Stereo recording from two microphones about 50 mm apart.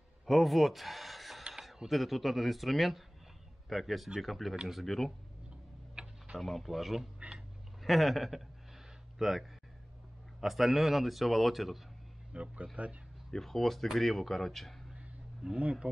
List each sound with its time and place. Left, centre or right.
0.3 s a man's voice: centre
6.0 s tick-tock: centre
6.4 s a man's voice: centre
7.2 s a sound: centre
7.8 s a man's voice: centre
12.3 s a man's voice: right
13.3 s a man's voice: centre
15.4 s speech: centre